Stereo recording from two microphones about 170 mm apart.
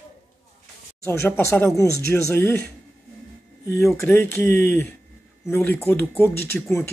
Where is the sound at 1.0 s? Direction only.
15° left (ahead or behind).